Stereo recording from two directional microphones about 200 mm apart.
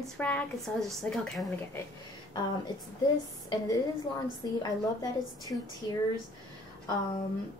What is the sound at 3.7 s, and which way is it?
A woman's voice, 20° left (ahead or behind).